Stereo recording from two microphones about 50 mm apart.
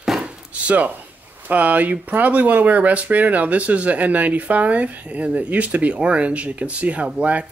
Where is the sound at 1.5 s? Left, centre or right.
Right.